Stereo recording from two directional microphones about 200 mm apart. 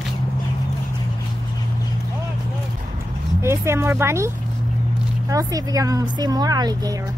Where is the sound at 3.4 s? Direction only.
15° right (ahead or behind).